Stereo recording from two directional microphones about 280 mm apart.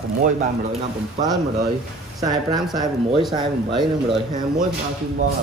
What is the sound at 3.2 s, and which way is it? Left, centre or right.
Speech, centre.